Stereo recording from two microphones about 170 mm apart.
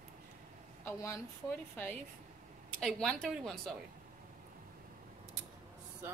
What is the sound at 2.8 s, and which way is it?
Speech, centre (ahead or behind).